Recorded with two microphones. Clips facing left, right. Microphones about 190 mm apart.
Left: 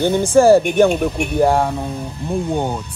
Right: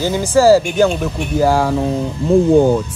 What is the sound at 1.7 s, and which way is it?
Speech, 90° right.